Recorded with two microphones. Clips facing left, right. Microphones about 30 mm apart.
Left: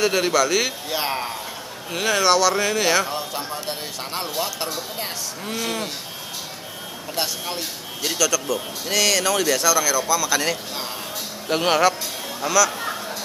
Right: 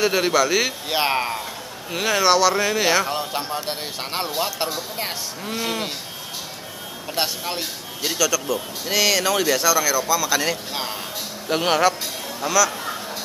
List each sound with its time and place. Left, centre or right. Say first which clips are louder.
0.0 s speech: even; centre
0.8 s a man's voice: right 4 dB; right
1.9 s speech: even; centre
3.1 s speech: right 2 dB; right
7.2 s speech: right 2 dB; centre
8.0 s speech: even; centre